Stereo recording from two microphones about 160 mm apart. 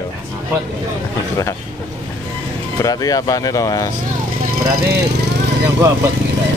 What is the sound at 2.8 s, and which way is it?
Speech, 20° left (ahead or behind).